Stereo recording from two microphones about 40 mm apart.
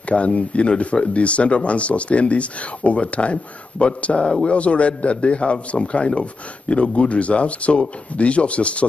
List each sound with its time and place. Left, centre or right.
0.1 s speech: left